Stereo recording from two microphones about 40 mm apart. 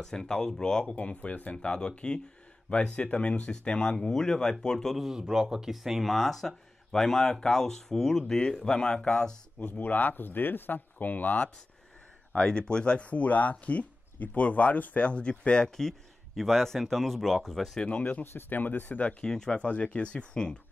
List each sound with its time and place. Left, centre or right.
0.0 s speech: centre
0.9 s speech: left
1.7 s speech: left
4.9 s speech: centre
6.1 s speech: centre
9.7 s speech: left
12.4 s speech: left
15.0 s speech: left
15.7 s speech: centre
17.8 s speech: left
18.5 s speech: left
18.9 s speech: left
19.2 s speech: centre
19.6 s speech: left